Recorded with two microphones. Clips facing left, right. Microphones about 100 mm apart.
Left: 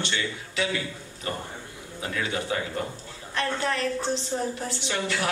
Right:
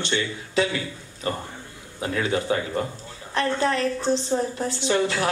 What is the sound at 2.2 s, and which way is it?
A man's voice, 35° right (ahead or behind).